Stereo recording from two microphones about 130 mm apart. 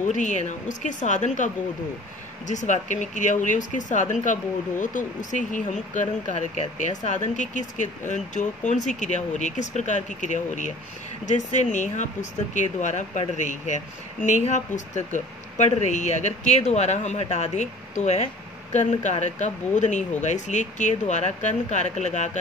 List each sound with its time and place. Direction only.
0.0 s speech: 70° left (ahead or behind)